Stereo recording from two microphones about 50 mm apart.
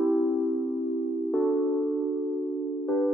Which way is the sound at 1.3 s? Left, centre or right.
Centre.